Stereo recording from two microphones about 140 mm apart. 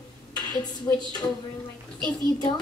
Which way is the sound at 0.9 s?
25° left (ahead or behind).